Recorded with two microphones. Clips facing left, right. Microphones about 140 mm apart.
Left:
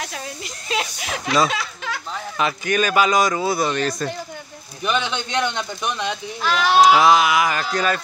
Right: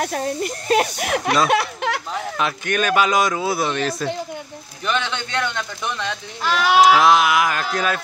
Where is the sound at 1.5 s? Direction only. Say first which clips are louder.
Right 8 dB; 65° right (ahead or behind).